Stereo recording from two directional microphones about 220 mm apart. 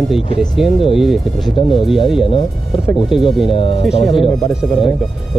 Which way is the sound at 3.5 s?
25° left (ahead or behind).